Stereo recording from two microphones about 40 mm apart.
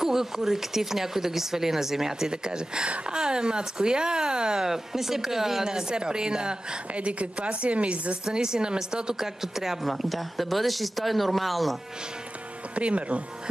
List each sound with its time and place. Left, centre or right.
0.0 s speech: centre; by 8.2 s right
8.3 s speech: centre
9.2 s a woman's voice: centre
12.7 s speech: right